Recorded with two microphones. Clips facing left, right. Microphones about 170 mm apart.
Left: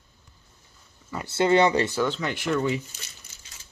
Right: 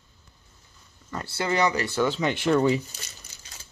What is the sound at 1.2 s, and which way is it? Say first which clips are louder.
Speech: left 5 dB; 25° left (ahead or behind).